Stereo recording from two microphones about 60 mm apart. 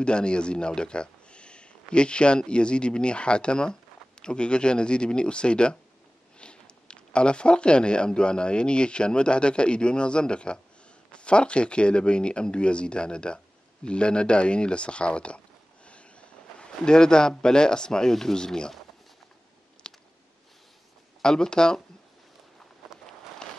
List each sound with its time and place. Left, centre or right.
0.0 s speech: centre
19.8 s a sound: centre
21.2 s speech: centre